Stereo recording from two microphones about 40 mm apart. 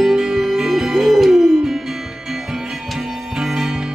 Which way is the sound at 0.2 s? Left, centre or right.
Centre.